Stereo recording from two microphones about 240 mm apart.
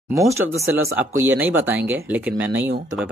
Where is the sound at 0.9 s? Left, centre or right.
Centre.